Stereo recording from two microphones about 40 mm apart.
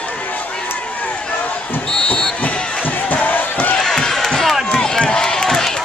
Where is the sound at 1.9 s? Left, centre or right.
Centre.